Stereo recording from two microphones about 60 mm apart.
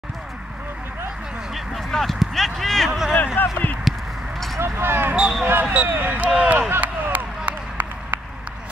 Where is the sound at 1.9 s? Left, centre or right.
Centre.